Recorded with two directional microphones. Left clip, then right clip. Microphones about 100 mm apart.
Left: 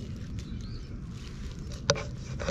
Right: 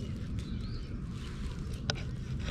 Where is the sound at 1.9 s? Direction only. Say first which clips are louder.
Left 10 dB; 30° left (ahead or behind).